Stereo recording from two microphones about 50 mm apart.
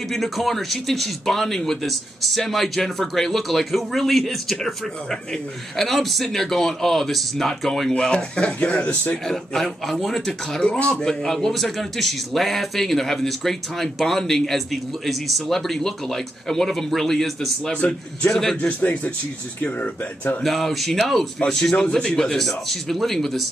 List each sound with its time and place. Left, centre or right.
0.1 s a man's voice: centre
8.0 s a man's voice: centre
9.2 s a man's voice: centre
10.6 s a man's voice: centre
17.7 s a man's voice: left
18.3 s a man's voice: centre
18.6 s a man's voice: left
20.4 s a man's voice: centre